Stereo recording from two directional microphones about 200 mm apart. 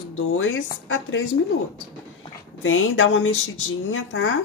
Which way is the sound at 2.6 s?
80° left.